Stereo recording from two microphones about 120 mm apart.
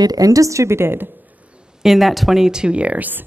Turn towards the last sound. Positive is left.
turn(degrees=-15)  # may be behind; listen again after turning